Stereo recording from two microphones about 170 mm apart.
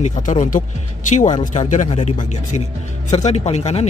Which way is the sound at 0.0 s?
45° left (ahead or behind).